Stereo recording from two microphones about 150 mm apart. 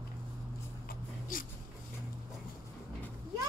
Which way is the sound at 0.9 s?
65° left (ahead or behind).